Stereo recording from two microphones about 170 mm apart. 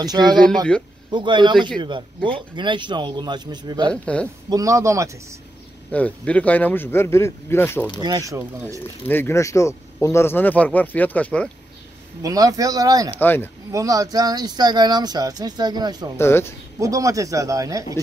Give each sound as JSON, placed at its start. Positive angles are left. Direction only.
{"t": 0.0, "sound": "speech", "side_deg": -25}
{"t": 0.7, "sound": "speech", "side_deg": 5}
{"t": 1.1, "sound": "speech", "side_deg": -30}
{"t": 3.9, "sound": "a man's voice", "side_deg": 5}
{"t": 4.5, "sound": "speech", "side_deg": -20}
{"t": 5.9, "sound": "a man's voice", "side_deg": 10}
{"t": 8.0, "sound": "speech", "side_deg": -20}
{"t": 9.0, "sound": "a man's voice", "side_deg": 10}
{"t": 12.2, "sound": "speech", "side_deg": -20}
{"t": 13.1, "sound": "a man's voice", "side_deg": 10}
{"t": 13.7, "sound": "speech", "side_deg": -20}
{"t": 16.2, "sound": "a man's voice", "side_deg": 15}
{"t": 16.8, "sound": "speech", "side_deg": -20}